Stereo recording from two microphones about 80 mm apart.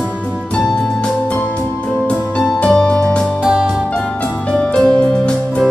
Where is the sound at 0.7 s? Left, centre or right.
Centre.